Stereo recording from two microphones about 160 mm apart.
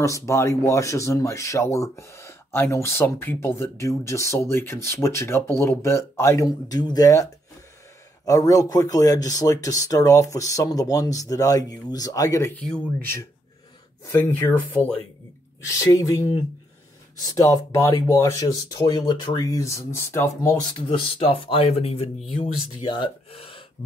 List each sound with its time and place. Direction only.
0.0 s speech: 15° left (ahead or behind)
8.3 s speech: 20° left (ahead or behind)
20.9 s speech: 35° left (ahead or behind)